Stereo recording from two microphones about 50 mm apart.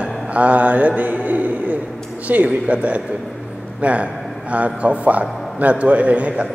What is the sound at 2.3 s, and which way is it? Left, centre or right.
A man's voice, right.